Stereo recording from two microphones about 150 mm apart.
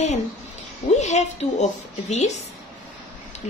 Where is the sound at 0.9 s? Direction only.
50° left (ahead or behind).